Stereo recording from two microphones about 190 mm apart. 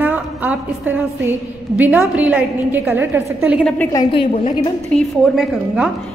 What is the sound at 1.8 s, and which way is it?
A woman's voice, 5° right (ahead or behind).